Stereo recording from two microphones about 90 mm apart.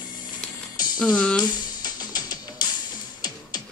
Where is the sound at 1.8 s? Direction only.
45° left (ahead or behind).